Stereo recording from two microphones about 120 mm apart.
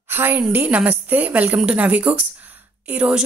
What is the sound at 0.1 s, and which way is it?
A woman's voice, 15° right (ahead or behind).